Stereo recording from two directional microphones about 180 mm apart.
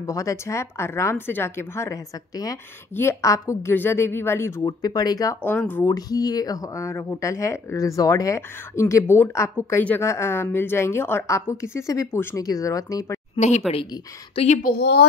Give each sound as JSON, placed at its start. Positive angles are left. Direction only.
{"t": 0.0, "sound": "speech", "side_deg": 15}
{"t": 5.4, "sound": "speech", "side_deg": 10}
{"t": 5.9, "sound": "speech", "side_deg": 20}
{"t": 14.3, "sound": "a woman's voice", "side_deg": 35}
{"t": 14.6, "sound": "a woman's voice", "side_deg": 60}